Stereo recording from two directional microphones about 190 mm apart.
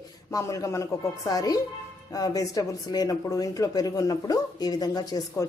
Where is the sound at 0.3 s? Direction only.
15° left (ahead or behind).